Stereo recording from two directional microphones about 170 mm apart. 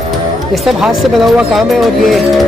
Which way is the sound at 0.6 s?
Centre (ahead or behind).